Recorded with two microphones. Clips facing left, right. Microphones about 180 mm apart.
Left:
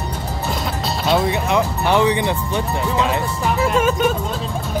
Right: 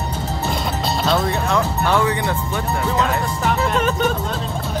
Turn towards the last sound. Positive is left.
turn(degrees=10)  # may be behind; listen again after turning